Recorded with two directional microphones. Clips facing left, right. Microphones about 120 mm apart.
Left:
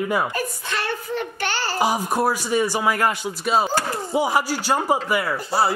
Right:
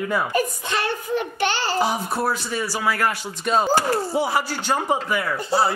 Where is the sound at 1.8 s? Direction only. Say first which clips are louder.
Left 5 dB; 15° left (ahead or behind).